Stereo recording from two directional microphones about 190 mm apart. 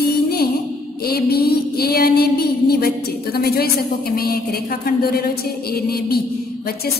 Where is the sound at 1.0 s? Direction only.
55° left (ahead or behind).